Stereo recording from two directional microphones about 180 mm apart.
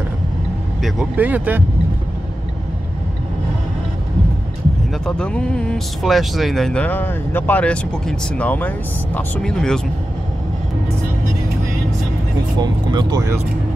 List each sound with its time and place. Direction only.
0.8 s speech: 5° right (ahead or behind)
5.0 s speech: 5° left (ahead or behind)
12.5 s speech: 20° right (ahead or behind)